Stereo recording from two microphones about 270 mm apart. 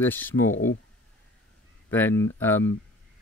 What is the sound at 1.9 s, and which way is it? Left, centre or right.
Speech, centre.